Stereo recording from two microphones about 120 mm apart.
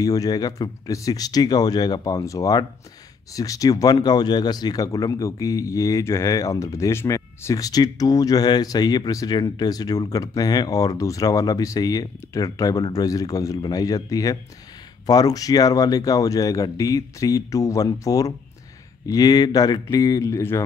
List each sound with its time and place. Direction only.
0.0 s speech: 30° left (ahead or behind)